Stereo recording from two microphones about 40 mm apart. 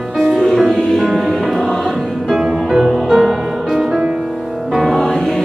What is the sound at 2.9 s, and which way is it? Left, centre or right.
Music, centre.